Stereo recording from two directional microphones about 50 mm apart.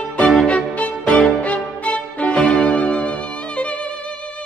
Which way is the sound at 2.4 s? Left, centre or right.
Centre.